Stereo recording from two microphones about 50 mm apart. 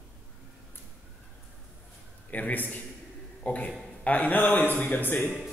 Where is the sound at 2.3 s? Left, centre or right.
Left.